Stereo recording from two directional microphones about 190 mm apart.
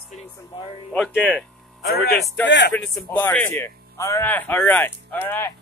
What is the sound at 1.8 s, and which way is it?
Speech, 55° left (ahead or behind).